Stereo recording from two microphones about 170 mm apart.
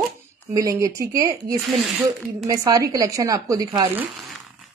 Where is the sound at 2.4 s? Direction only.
20° right (ahead or behind).